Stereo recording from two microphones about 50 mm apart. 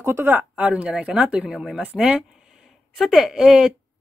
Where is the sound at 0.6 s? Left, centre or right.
Right.